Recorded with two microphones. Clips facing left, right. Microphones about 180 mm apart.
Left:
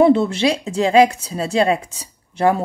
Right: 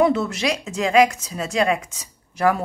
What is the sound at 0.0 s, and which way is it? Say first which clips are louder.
Speech: left 5 dB; 30° left (ahead or behind).